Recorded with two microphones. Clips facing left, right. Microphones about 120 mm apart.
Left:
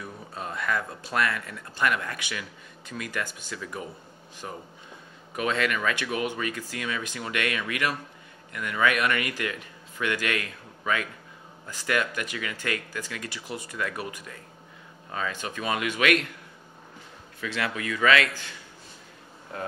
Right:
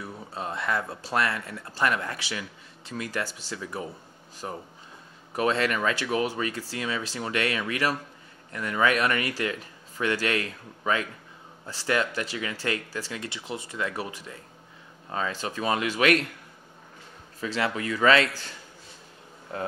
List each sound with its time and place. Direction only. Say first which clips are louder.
0.0 s speech: right 2 dB; 30° right (ahead or behind)
11.6 s speech: right 1 dB; 30° right (ahead or behind)
17.4 s speech: right 3 dB; 30° right (ahead or behind)